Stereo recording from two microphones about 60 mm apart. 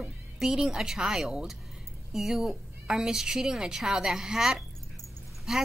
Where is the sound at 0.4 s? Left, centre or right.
Centre.